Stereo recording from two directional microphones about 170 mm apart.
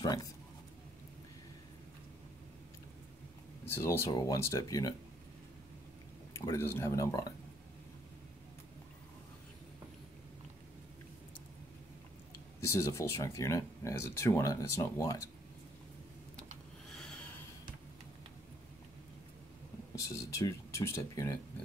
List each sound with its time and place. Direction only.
0.0 s speech: 25° left (ahead or behind)
3.6 s speech: 15° left (ahead or behind)
6.3 s speech: 15° left (ahead or behind)
12.5 s speech: 15° left (ahead or behind)
16.9 s a sound: 5° left (ahead or behind)
20.0 s speech: 20° left (ahead or behind)